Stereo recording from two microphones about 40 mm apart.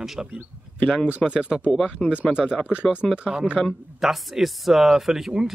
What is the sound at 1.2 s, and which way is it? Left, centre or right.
Speech, left.